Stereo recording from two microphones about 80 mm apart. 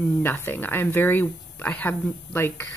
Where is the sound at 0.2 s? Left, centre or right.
Left.